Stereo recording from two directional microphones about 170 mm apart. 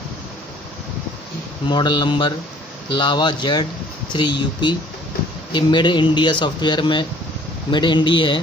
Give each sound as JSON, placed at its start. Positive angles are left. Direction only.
{"t": 1.7, "sound": "speech", "side_deg": 25}